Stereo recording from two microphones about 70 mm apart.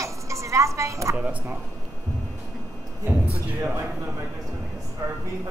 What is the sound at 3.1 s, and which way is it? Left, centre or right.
Speech, right.